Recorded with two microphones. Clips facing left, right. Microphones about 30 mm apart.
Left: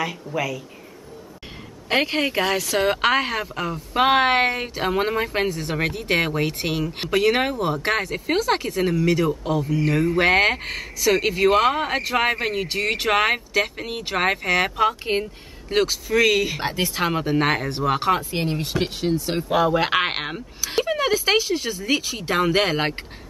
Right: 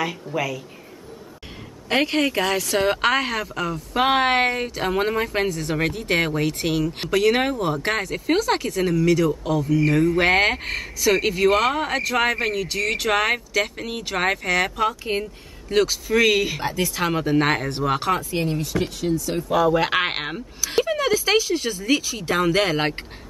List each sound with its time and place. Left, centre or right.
0.0 s speech: centre
1.9 s speech: centre
16.1 s speech: centre
16.5 s speech: left
16.9 s speech: centre
18.3 s speech: left
19.7 s speech: centre